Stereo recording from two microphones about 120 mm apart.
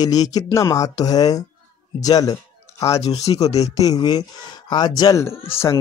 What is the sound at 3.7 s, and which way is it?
Speech, 30° left (ahead or behind).